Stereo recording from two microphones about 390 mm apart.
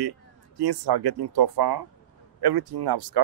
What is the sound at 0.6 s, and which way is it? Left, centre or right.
Speech, right.